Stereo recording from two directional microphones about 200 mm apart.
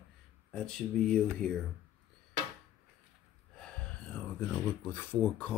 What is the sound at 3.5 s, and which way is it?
Speech, 5° left (ahead or behind).